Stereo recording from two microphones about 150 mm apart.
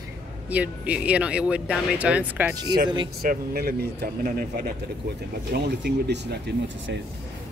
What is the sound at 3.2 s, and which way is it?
Speech, 80° right.